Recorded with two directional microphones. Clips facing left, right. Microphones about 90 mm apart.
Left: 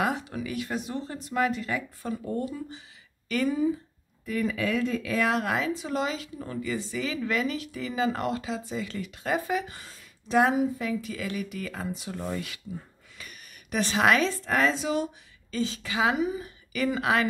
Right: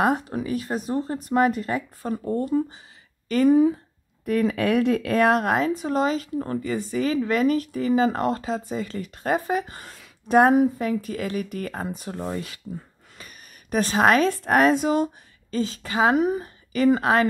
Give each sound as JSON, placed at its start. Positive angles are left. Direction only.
{"t": 0.0, "sound": "a woman's voice", "side_deg": -45}
{"t": 3.4, "sound": "a woman's voice", "side_deg": -60}
{"t": 9.8, "sound": "a woman's voice", "side_deg": -60}
{"t": 12.2, "sound": "speech", "side_deg": -30}
{"t": 13.2, "sound": "a sound", "side_deg": -40}
{"t": 14.3, "sound": "a woman's voice", "side_deg": -55}
{"t": 16.4, "sound": "a woman's voice", "side_deg": -40}